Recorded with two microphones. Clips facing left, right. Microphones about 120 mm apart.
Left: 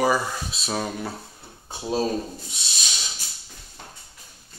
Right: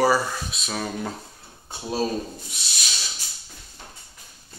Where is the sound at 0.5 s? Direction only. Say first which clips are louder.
Even; 30° left (ahead or behind).